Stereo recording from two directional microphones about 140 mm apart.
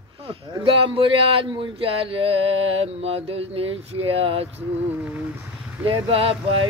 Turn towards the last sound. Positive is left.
turn(degrees=-40)  # may be behind; listen again after turning